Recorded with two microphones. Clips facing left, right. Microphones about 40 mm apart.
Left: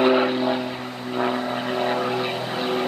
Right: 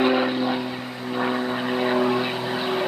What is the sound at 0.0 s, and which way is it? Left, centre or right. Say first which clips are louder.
Vehicle: left 2 dB; centre.